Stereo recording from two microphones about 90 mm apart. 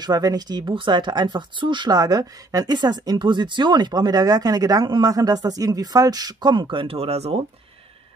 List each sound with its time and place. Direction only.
0.0 s speech: 45° right (ahead or behind); by 7.2 s 90° right